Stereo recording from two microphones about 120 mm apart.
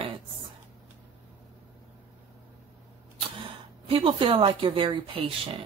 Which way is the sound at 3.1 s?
45° right (ahead or behind).